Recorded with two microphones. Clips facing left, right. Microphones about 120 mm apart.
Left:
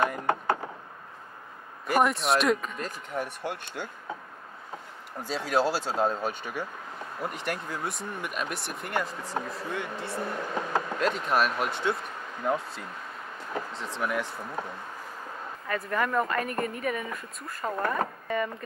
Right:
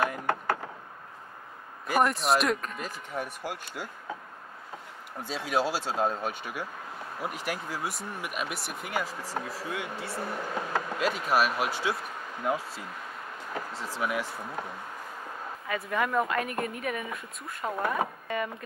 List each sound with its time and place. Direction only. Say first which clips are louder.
0.3 s a sound: left 2 dB; 20° left (ahead or behind)
1.9 s speech: left 1 dB; centre (ahead or behind)
5.2 s speech: left 2 dB; centre (ahead or behind)